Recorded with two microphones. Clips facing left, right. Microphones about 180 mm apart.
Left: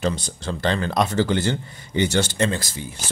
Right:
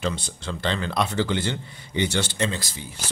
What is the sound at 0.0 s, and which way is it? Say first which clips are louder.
Speech: left 4 dB; 40° left (ahead or behind).